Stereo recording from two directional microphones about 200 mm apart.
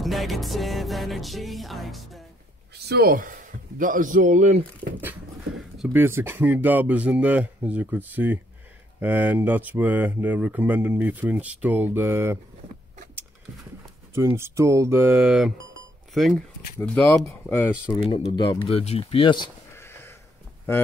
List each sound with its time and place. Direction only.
0.0 s music: centre (ahead or behind)
2.9 s a man's voice: 50° right (ahead or behind)
5.8 s speech: 10° right (ahead or behind)
14.1 s speech: 15° right (ahead or behind); by 17.7 s 10° left (ahead or behind)
17.8 s speech: 25° left (ahead or behind)
19.8 s a sound: 10° left (ahead or behind)